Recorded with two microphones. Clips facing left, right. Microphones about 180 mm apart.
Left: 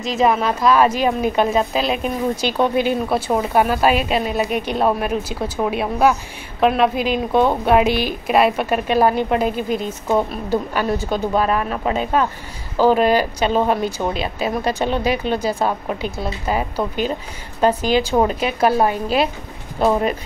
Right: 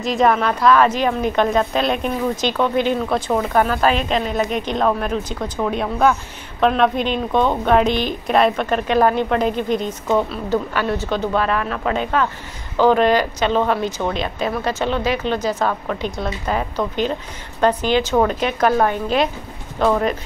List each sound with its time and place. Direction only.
0.0 s a woman's voice: centre (ahead or behind)
11.5 s a woman's voice: 20° left (ahead or behind)